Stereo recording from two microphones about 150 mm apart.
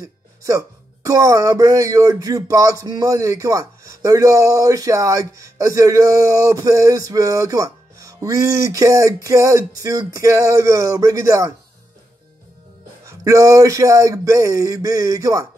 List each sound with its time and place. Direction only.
0.0 s speech: 20° right (ahead or behind)
13.0 s speech: 20° right (ahead or behind)